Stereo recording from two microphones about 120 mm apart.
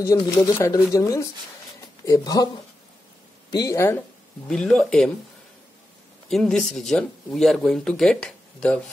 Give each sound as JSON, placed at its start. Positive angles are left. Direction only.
{"t": 0.0, "sound": "speech", "side_deg": 30}
{"t": 4.5, "sound": "speech", "side_deg": 5}
{"t": 6.5, "sound": "speech", "side_deg": 0}